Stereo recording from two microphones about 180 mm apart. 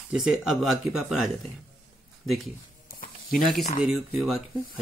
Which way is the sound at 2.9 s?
55° left (ahead or behind).